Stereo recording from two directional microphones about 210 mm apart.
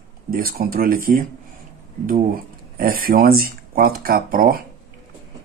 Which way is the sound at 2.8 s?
45° right (ahead or behind).